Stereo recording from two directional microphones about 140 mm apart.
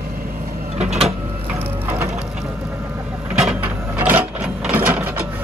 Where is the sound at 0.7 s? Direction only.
50° right (ahead or behind).